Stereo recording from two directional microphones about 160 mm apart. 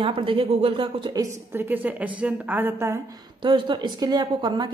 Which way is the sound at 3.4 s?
30° right (ahead or behind).